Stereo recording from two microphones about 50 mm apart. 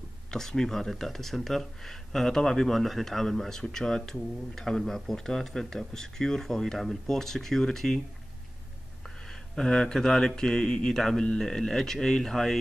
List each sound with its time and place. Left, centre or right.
0.3 s speech: centre
9.0 s speech: centre